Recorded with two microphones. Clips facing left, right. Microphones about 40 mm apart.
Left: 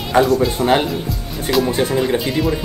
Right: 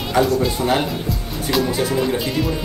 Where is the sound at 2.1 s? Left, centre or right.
Centre.